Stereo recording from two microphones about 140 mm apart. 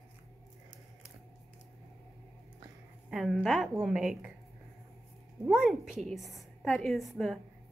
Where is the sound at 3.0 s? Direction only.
5° right (ahead or behind).